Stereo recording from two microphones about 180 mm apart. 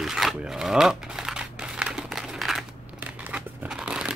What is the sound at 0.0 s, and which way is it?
Crumpling, centre (ahead or behind).